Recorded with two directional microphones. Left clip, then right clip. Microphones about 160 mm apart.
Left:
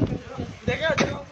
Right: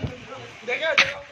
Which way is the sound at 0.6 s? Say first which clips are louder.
Right 3 dB; 10° left (ahead or behind).